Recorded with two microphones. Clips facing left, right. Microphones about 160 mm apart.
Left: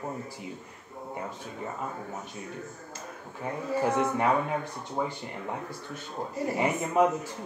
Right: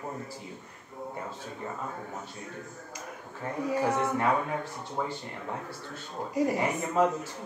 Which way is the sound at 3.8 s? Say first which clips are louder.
Left 3 dB; 15° left (ahead or behind).